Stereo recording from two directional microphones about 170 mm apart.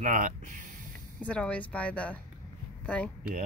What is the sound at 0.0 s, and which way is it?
Speech, 50° right (ahead or behind).